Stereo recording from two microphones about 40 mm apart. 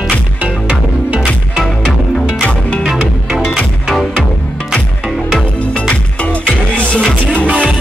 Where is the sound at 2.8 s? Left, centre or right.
Centre.